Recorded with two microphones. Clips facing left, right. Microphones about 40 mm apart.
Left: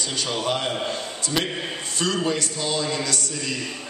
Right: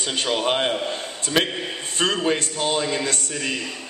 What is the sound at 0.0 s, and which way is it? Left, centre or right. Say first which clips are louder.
Speech: right 3 dB; right.